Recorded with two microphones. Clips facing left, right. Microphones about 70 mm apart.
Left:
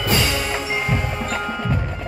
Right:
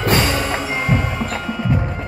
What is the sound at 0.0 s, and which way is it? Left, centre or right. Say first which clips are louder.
Music: right 3 dB; right.